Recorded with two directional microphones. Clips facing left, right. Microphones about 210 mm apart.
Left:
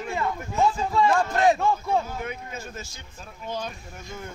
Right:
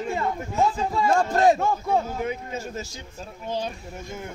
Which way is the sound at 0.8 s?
45° right (ahead or behind).